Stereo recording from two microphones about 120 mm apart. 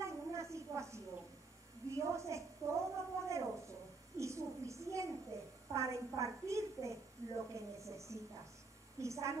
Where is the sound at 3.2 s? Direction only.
25° right (ahead or behind).